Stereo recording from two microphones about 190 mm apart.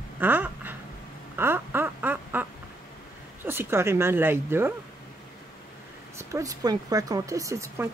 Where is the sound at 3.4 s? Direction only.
10° right (ahead or behind).